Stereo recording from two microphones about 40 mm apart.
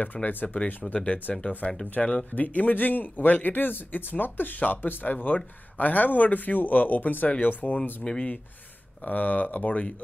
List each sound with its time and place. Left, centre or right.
0.0 s speech: left
0.9 s speech: left
2.3 s speech: left
8.0 s speech: left
9.0 s speech: left